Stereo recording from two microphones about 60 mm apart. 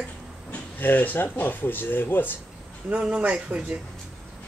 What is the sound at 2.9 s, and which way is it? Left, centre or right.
Speech, centre.